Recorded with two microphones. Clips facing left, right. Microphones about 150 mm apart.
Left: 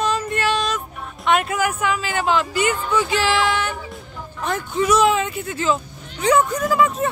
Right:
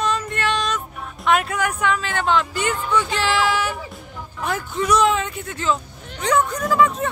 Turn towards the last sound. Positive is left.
turn(degrees=5)  # may be behind; listen again after turning